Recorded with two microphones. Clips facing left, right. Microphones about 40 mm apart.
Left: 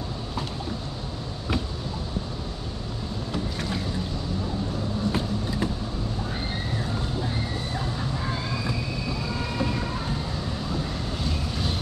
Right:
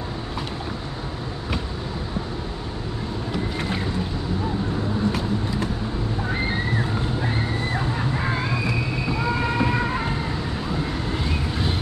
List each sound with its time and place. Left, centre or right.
5.1 s vehicle: right
6.3 s a sound: right
8.1 s vehicle: right
10.7 s vehicle: right